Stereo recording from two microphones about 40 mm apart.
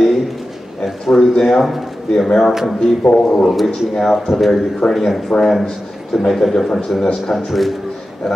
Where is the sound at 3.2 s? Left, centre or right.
Centre.